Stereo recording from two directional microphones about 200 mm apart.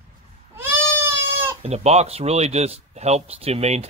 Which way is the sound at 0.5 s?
10° right (ahead or behind).